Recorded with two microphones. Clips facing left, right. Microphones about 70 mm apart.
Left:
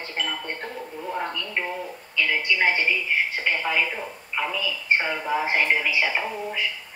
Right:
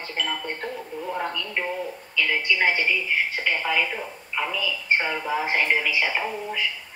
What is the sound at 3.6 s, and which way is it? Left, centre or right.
Speech, centre.